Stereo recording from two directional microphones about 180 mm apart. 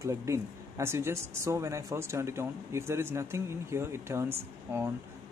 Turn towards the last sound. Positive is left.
turn(degrees=-15)  # may be behind; listen again after turning